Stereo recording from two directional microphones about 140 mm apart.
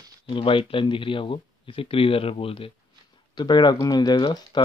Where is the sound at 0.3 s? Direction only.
40° left (ahead or behind).